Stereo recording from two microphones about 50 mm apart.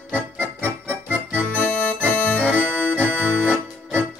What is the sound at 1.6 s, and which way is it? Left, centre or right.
Accordion, left.